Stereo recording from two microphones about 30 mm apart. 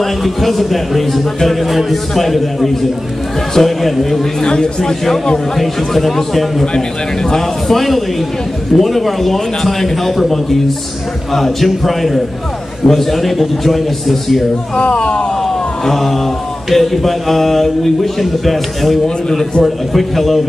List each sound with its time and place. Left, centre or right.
0.0 s speech: centre
4.4 s speech: left
5.0 s a man's voice: centre
11.6 s speech: centre
14.8 s speech: left
15.4 s a sound: centre
16.7 s speech: centre
19.0 s speech: left
19.6 s speech: centre